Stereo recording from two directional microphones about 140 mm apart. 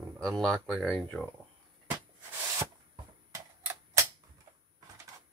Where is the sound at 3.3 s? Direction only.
20° right (ahead or behind).